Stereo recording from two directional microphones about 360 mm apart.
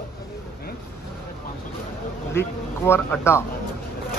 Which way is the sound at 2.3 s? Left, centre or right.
Centre.